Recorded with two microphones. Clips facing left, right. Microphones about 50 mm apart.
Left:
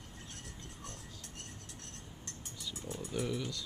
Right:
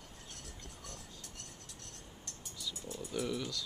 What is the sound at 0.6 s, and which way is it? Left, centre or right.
Vehicle, left.